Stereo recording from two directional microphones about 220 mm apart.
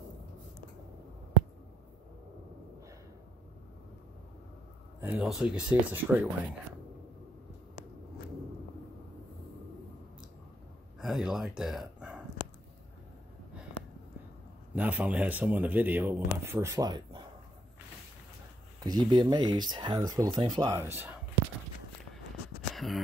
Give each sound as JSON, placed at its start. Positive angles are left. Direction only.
{"t": 5.0, "sound": "speech", "side_deg": -5}
{"t": 11.0, "sound": "speech", "side_deg": 0}
{"t": 14.7, "sound": "speech", "side_deg": -5}
{"t": 18.8, "sound": "speech", "side_deg": -20}
{"t": 22.7, "sound": "a sound", "side_deg": 0}